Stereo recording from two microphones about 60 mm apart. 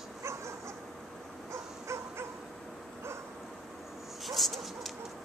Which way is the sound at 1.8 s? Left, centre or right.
Right.